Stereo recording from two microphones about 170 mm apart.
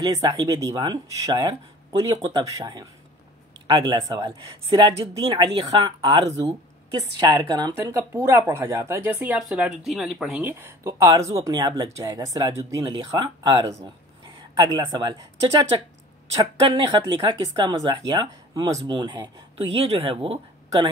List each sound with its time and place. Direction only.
0.0 s speech: 20° right (ahead or behind)